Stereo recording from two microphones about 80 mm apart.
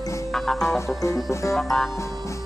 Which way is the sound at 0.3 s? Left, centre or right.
Centre.